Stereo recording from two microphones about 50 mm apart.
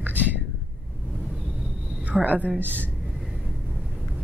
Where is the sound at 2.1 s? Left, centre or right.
Centre.